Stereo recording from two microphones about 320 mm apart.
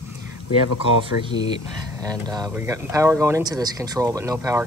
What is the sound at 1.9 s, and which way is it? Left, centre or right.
Speech, centre.